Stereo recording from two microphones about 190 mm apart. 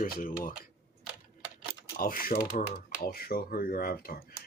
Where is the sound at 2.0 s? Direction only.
50° left (ahead or behind).